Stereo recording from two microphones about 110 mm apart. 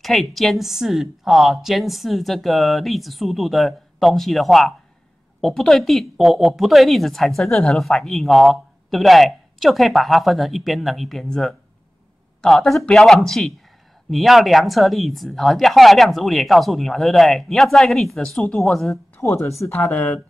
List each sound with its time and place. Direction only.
0.0 s speech: centre (ahead or behind)
19.1 s speech: 25° left (ahead or behind)